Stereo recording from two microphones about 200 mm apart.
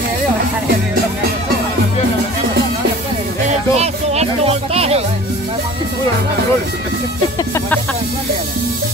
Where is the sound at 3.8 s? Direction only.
30° right (ahead or behind).